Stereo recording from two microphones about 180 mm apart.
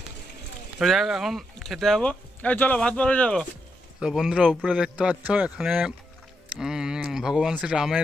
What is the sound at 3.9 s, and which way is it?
Speech, 5° right (ahead or behind).